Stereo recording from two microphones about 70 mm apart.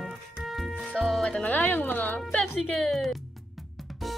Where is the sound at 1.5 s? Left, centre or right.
Left.